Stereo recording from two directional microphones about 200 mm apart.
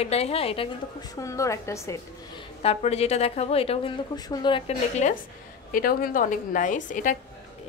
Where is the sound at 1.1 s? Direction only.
15° left (ahead or behind).